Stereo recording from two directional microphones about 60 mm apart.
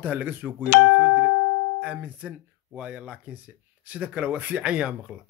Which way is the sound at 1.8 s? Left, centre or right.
Right.